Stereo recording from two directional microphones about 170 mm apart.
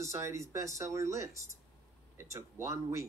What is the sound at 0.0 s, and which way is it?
Speech, 20° right (ahead or behind).